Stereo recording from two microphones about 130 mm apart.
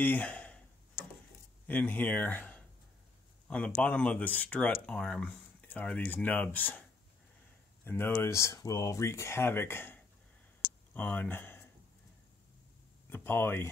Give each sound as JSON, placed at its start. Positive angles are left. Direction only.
{"t": 0.0, "sound": "speech", "side_deg": 10}
{"t": 1.7, "sound": "speech", "side_deg": 10}
{"t": 7.8, "sound": "speech", "side_deg": 15}
{"t": 10.9, "sound": "a sound", "side_deg": 15}
{"t": 13.1, "sound": "speech", "side_deg": 15}